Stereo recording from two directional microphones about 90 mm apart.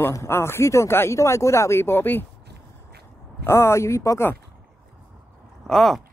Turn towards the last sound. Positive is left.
turn(degrees=0)  # may be behind; listen again after turning